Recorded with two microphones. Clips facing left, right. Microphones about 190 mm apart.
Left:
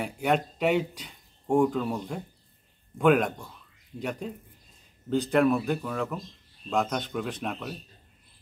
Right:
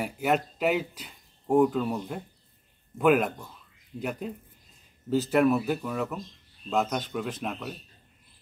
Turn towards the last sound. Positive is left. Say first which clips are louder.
# even
turn(degrees=0)  # may be behind; listen again after turning